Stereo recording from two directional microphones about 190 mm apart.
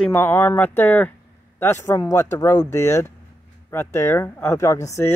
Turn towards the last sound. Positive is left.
turn(degrees=15)  # may be behind; listen again after turning